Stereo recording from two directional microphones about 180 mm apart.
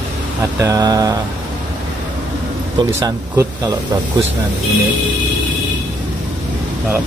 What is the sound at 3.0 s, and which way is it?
Speech, 20° right (ahead or behind).